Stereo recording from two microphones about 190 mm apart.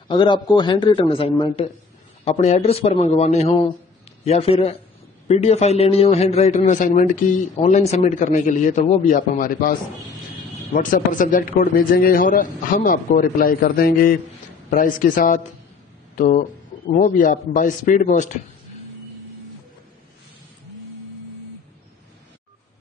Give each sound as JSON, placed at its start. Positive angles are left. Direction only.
{"t": 0.1, "sound": "a man's voice", "side_deg": 25}